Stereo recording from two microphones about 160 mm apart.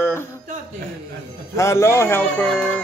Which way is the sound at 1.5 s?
15° left (ahead or behind).